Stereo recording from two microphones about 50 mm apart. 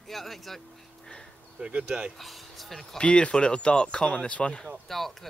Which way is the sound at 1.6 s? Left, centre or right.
Centre.